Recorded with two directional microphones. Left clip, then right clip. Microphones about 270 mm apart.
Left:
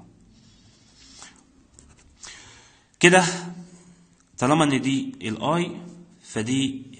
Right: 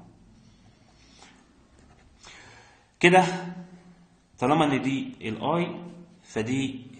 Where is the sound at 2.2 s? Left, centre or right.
Left.